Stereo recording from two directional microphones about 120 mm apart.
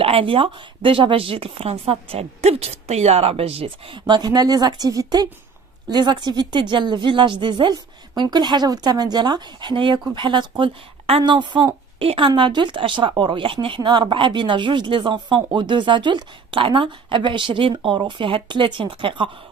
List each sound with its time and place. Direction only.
0.0 s a woman's voice: 50° right (ahead or behind)
4.0 s a woman's voice: 35° right (ahead or behind)